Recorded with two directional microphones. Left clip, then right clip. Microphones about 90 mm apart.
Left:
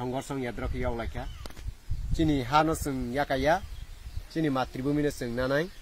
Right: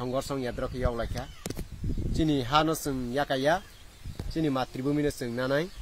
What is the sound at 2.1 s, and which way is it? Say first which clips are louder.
Speech: left 1 dB; centre (ahead or behind).